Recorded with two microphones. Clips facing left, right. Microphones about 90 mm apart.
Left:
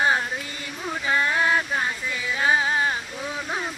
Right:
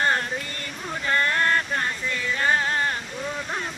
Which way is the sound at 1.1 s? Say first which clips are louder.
Even; 10° left (ahead or behind).